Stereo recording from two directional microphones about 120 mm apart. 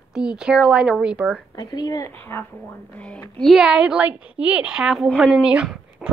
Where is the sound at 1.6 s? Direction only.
35° left (ahead or behind).